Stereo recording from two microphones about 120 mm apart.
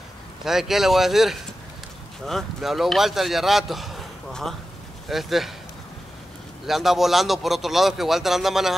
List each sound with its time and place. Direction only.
0.5 s a man's voice: 5° right (ahead or behind)
6.6 s a man's voice: centre (ahead or behind)